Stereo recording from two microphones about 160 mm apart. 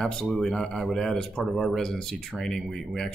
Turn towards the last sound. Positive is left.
turn(degrees=5)  # may be behind; listen again after turning